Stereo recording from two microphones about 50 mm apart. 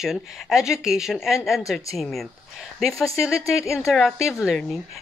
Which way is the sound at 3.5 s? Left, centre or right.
Left.